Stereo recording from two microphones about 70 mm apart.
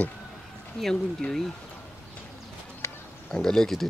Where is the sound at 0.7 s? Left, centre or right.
Centre.